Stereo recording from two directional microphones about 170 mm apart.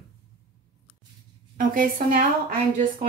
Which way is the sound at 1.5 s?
55° right (ahead or behind).